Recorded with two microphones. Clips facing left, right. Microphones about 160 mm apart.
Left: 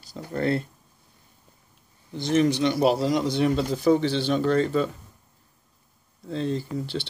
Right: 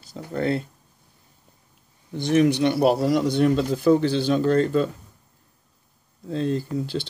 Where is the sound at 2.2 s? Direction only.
60° right (ahead or behind); by 4.8 s 45° right (ahead or behind).